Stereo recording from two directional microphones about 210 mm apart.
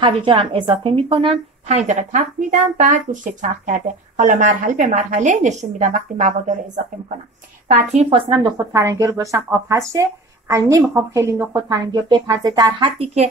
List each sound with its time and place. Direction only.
0.0 s a woman's voice: 25° right (ahead or behind)